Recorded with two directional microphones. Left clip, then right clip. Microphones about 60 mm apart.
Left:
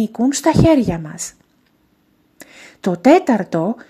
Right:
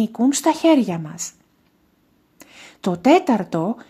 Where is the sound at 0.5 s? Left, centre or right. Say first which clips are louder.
Left 3 dB; left.